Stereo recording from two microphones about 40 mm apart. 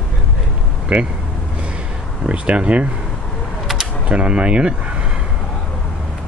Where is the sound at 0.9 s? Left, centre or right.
Right.